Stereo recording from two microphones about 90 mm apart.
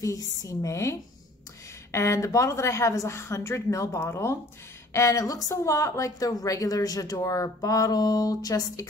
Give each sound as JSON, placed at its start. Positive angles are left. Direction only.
{"t": 0.0, "sound": "a woman's voice", "side_deg": 40}